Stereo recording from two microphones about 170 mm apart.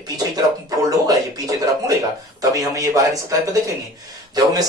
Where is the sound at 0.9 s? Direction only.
20° right (ahead or behind).